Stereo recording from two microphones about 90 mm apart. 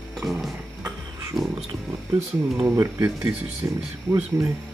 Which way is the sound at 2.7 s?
30° right (ahead or behind).